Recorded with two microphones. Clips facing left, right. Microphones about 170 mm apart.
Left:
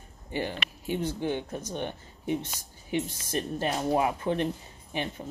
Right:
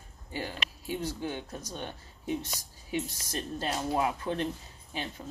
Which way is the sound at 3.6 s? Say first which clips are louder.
Left 3 dB; 20° left (ahead or behind).